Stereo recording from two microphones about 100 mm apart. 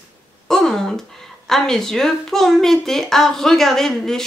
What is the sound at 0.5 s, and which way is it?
Speech, 5° left (ahead or behind).